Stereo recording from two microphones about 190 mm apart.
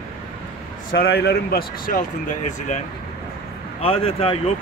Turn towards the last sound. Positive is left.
turn(degrees=30)  # may be behind; listen again after turning